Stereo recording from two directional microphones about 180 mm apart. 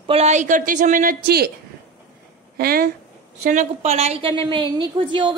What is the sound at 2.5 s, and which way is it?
Speech, 55° right (ahead or behind).